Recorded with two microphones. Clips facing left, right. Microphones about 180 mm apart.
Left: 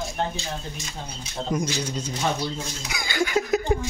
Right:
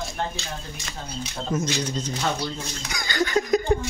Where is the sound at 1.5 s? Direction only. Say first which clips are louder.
Right 1 dB; 10° left (ahead or behind).